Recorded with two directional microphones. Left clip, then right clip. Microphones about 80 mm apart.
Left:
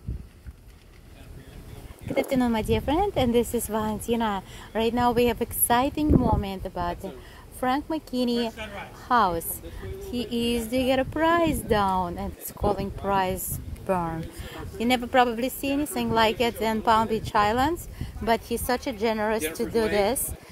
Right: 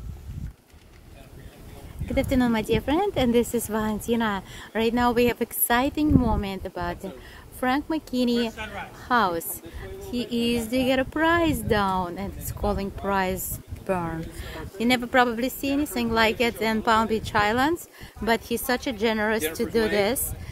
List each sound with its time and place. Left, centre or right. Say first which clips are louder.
2.1 s a woman's voice: right 1 dB; right
10.0 s a woman's voice: right 1 dB; right
15.0 s a woman's voice: even; right
15.2 s a woman's voice: right 1 dB; right